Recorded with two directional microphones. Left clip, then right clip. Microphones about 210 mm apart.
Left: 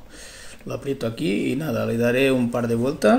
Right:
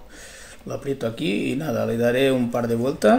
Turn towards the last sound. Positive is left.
turn(degrees=0)  # may be behind; listen again after turning